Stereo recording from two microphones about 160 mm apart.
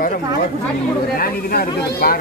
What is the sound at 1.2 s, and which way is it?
Speech, 70° left (ahead or behind).